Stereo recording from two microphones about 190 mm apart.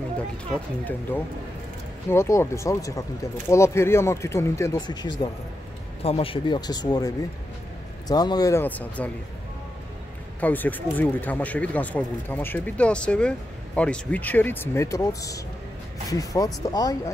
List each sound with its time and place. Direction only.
2.0 s speech: 15° left (ahead or behind)
8.1 s speech: 20° left (ahead or behind)
10.4 s speech: 10° left (ahead or behind)